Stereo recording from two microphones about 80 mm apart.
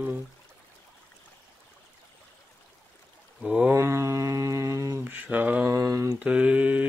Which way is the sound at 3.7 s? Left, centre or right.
Right.